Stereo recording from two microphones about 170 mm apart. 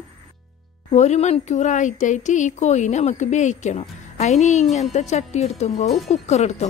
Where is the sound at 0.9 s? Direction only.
40° left (ahead or behind).